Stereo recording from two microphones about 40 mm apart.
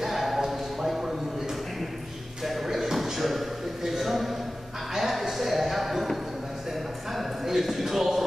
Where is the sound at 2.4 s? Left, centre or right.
Centre.